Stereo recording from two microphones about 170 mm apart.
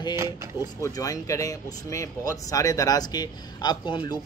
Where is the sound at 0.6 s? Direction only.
20° left (ahead or behind).